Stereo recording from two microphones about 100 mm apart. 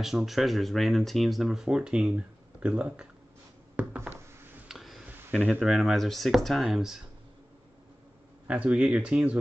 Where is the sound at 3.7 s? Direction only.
15° right (ahead or behind).